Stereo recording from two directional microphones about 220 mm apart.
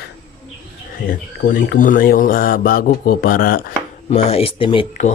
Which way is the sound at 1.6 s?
35° left (ahead or behind).